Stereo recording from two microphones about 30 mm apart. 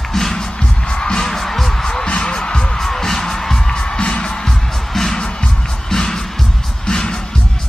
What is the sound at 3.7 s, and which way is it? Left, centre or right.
Music, left.